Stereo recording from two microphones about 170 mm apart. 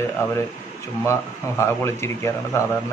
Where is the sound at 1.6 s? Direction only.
15° left (ahead or behind).